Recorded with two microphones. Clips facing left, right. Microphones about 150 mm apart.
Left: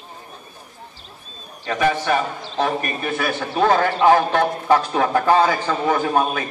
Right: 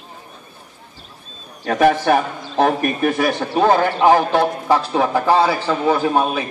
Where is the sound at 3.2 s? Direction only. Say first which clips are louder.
Right 1 dB; 15° right (ahead or behind).